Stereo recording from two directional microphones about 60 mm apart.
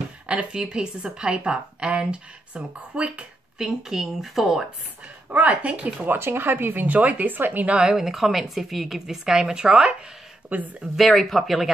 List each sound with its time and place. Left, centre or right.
0.3 s a woman's voice: centre
3.5 s a woman's voice: centre
5.3 s speech: right
6.0 s a woman's voice: right
7.6 s a woman's voice: centre
10.5 s a woman's voice: right
11.0 s speech: centre